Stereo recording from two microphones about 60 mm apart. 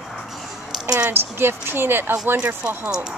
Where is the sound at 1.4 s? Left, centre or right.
Right.